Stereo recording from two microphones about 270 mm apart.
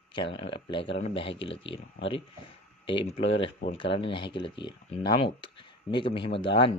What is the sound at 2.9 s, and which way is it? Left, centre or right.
Speech, centre.